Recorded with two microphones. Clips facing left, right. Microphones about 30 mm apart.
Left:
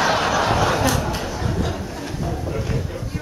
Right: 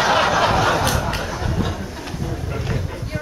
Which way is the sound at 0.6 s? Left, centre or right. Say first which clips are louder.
Right 1 dB; centre.